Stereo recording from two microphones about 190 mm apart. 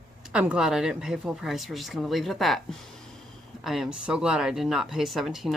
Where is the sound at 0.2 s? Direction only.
5° right (ahead or behind).